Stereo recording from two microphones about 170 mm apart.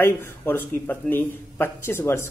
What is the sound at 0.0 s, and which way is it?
Speech, 15° left (ahead or behind).